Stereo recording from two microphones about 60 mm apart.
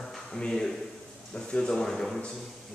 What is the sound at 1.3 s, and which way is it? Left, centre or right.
Speech, centre.